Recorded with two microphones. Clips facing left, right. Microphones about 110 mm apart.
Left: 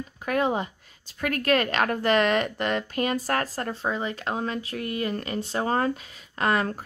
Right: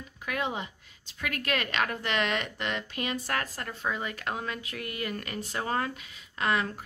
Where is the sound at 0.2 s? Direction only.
40° left (ahead or behind).